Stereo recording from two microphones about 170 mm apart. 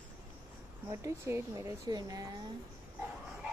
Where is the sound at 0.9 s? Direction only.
15° right (ahead or behind).